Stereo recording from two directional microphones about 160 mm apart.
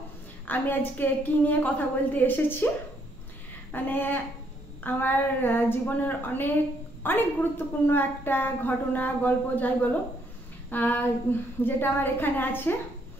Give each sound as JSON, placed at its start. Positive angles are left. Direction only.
{"t": 0.5, "sound": "a woman's voice", "side_deg": 10}
{"t": 3.7, "sound": "a woman's voice", "side_deg": 10}